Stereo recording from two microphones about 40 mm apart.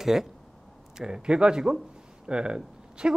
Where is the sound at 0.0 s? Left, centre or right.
Centre.